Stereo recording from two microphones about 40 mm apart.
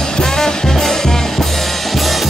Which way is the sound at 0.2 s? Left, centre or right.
Centre.